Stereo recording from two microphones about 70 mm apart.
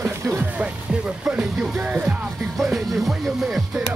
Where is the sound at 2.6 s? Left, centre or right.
Centre.